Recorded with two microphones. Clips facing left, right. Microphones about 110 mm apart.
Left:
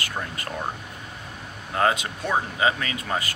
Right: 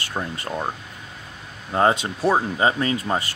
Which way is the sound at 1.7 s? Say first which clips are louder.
Right 4 dB; 30° right (ahead or behind).